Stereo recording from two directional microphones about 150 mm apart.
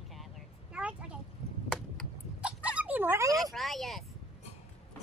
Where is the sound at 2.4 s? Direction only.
10° right (ahead or behind).